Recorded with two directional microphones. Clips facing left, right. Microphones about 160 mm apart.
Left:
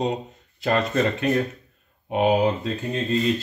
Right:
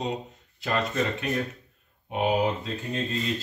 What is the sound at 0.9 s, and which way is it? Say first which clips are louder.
Speech: left 6 dB; 55° left (ahead or behind).